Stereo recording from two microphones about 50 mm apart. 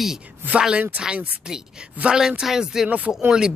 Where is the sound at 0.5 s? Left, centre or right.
Right.